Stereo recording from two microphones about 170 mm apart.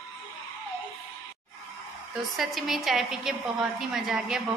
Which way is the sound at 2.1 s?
Centre (ahead or behind).